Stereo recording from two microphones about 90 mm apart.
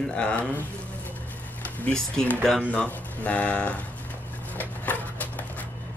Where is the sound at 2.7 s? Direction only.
15° left (ahead or behind).